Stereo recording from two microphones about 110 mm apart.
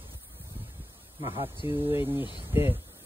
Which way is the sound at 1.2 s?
55° right (ahead or behind).